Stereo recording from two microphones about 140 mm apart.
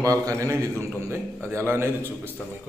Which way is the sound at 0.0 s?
25° right (ahead or behind).